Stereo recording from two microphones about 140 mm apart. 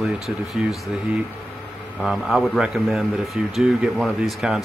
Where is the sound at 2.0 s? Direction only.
Centre (ahead or behind).